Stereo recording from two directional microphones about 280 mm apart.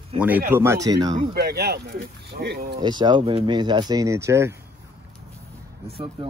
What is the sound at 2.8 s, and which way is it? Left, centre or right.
Speech, centre.